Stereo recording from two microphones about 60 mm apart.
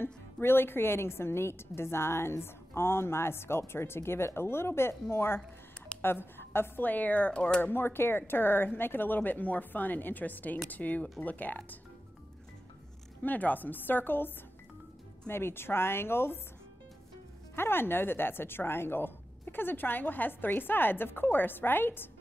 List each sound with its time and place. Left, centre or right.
0.0 s a woman's voice: left
7.6 s speech: left
13.2 s speech: left
17.6 s speech: left